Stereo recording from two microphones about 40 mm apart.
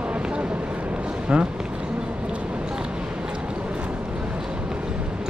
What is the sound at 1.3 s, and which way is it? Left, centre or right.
Speech, right.